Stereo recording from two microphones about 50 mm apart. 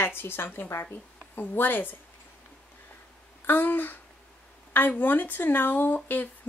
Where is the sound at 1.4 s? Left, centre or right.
Left.